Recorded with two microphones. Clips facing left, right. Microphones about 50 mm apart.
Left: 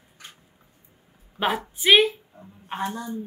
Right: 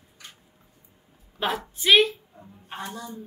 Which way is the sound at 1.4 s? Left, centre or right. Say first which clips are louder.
Left 3 dB; centre.